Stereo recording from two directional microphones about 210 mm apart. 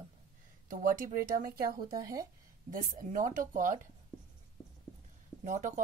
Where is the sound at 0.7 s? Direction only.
40° right (ahead or behind).